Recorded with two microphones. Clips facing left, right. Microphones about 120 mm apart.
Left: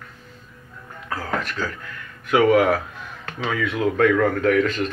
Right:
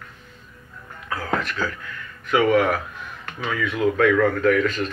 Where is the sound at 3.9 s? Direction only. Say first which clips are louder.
Left 1 dB; 40° left (ahead or behind).